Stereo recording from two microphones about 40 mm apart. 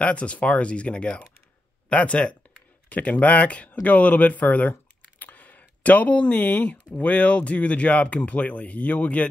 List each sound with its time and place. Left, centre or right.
0.0 s speech: left
5.2 s a sound: left
6.9 s speech: left